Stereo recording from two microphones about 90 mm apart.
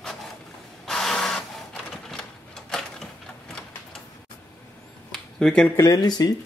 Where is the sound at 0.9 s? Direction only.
5° left (ahead or behind).